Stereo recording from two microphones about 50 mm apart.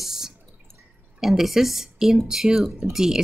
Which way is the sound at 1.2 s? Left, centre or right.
Centre.